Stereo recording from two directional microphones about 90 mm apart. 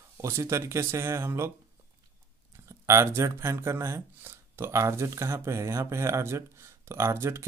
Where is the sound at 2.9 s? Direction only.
35° right (ahead or behind).